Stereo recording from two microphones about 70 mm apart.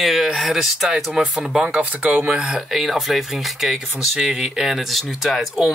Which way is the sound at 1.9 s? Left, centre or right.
Right.